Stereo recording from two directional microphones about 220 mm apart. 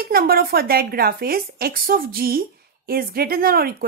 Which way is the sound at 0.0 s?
45° right (ahead or behind).